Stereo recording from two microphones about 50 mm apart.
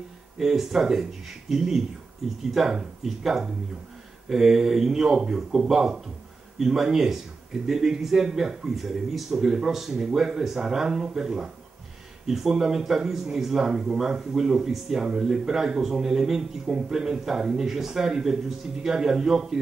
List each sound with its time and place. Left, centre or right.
0.4 s a man's voice: centre